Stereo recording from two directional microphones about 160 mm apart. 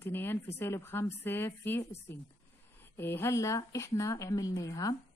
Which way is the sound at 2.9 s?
15° left (ahead or behind).